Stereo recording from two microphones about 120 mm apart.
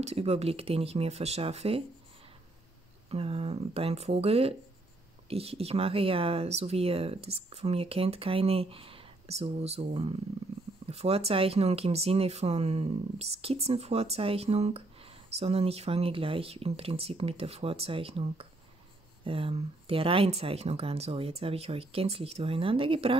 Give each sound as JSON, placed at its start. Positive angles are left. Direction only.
{"t": 0.0, "sound": "speech", "side_deg": -60}
{"t": 3.1, "sound": "speech", "side_deg": -55}